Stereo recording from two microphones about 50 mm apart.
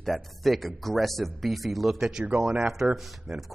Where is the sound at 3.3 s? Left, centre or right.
Centre.